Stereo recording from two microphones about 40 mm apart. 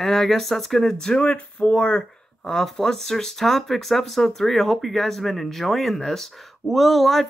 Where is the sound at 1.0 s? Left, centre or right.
Centre.